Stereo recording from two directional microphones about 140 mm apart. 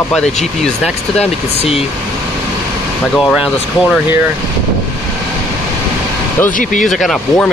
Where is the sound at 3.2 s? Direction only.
Centre (ahead or behind).